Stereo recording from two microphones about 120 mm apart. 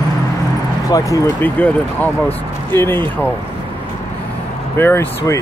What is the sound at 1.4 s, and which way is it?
Speech, 10° left (ahead or behind).